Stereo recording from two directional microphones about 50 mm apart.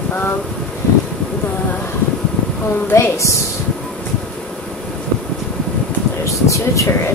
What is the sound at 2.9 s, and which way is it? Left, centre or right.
Speech, left.